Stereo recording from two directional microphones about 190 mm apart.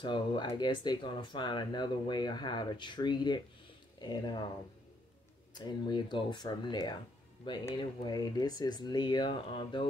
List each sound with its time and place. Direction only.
0.0 s speech: 25° left (ahead or behind)
5.5 s speech: 25° left (ahead or behind)